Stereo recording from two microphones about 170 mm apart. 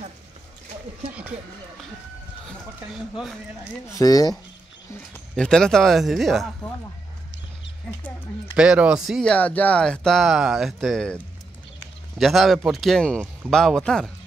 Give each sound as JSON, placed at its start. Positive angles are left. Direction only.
{"t": 2.4, "sound": "a sound", "side_deg": 0}
{"t": 4.0, "sound": "speech", "side_deg": 20}
{"t": 5.3, "sound": "speech", "side_deg": 5}
{"t": 8.5, "sound": "speech", "side_deg": -5}
{"t": 12.2, "sound": "speech", "side_deg": 0}